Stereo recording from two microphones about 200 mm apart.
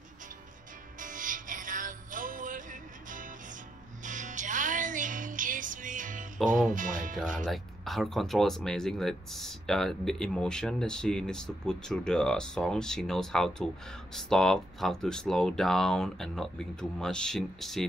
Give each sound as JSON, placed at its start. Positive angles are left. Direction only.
{"t": 0.9, "sound": "music", "side_deg": -40}
{"t": 6.7, "sound": "speech", "side_deg": -40}
{"t": 7.3, "sound": "speech", "side_deg": 0}